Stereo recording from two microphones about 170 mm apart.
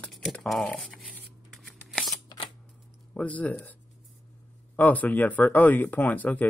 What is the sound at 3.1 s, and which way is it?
Speech, 10° left (ahead or behind).